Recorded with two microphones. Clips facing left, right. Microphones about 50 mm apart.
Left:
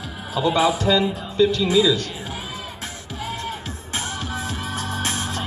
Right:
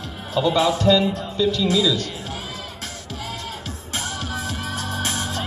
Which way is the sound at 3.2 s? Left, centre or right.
Left.